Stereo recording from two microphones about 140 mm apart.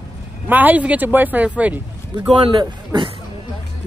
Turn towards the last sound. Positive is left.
turn(degrees=-35)  # may be behind; listen again after turning